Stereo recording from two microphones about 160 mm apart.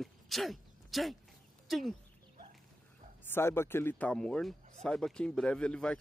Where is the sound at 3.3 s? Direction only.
15° left (ahead or behind).